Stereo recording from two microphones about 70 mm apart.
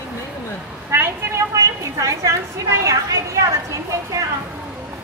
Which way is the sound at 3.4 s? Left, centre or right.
Right.